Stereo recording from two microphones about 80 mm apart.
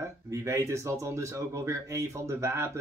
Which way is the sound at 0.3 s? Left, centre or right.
Right.